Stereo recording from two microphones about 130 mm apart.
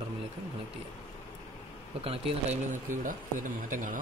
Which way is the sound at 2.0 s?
50° right (ahead or behind).